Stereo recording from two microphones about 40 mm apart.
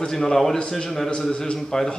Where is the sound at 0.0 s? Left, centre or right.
Centre.